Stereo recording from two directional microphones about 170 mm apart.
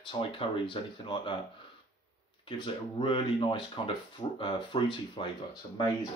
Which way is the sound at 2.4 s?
30° left (ahead or behind).